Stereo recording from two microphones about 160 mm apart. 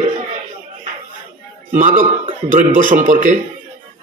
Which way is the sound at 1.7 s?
55° right (ahead or behind).